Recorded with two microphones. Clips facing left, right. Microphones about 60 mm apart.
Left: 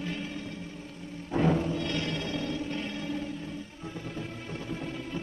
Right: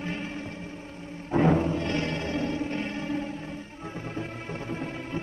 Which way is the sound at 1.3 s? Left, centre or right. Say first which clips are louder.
Right 4 dB; right.